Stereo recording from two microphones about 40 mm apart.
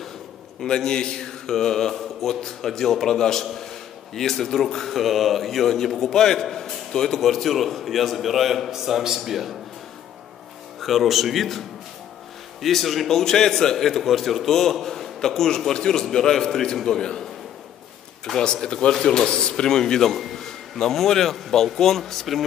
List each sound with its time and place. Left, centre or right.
0.6 s a man's voice: centre
10.8 s a man's voice: centre
12.6 s a man's voice: centre